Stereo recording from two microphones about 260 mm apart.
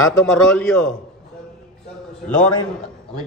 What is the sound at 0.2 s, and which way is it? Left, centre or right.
Speech, centre.